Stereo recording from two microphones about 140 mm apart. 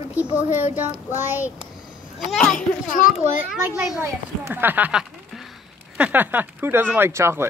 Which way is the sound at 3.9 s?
15° right (ahead or behind).